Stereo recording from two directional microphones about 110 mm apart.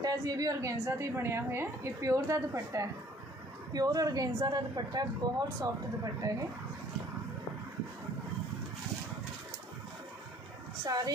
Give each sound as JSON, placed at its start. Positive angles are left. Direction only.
{"t": 0.0, "sound": "a woman's voice", "side_deg": -35}